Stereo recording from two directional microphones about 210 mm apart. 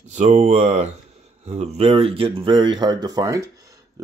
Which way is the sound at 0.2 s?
35° right (ahead or behind).